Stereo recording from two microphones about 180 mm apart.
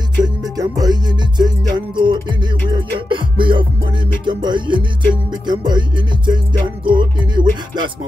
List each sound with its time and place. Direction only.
0.2 s music: 20° right (ahead or behind)